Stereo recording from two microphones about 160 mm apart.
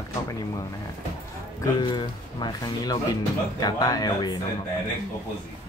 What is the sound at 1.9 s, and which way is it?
Speech, 25° left (ahead or behind).